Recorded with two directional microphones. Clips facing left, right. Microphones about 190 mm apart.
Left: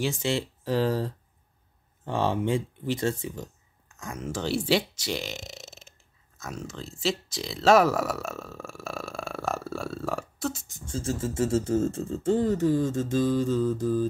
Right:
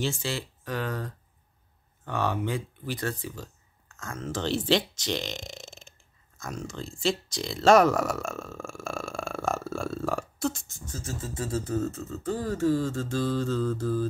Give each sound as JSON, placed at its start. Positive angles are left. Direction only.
{"t": 0.0, "sound": "speech", "side_deg": 20}
{"t": 10.7, "sound": "speech", "side_deg": 30}